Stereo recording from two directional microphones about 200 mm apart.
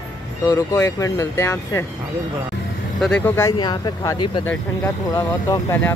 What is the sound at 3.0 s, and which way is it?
Speech, 5° left (ahead or behind).